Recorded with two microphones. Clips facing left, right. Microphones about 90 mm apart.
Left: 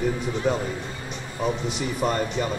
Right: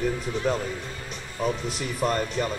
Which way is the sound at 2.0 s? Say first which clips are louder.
Even; 5° left (ahead or behind).